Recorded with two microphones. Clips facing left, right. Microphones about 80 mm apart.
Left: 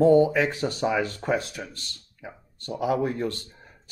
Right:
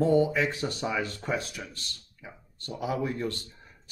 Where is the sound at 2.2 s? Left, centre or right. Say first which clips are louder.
Left 5 dB; left.